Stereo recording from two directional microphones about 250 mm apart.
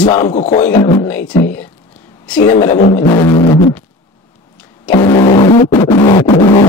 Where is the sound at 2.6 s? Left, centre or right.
Left.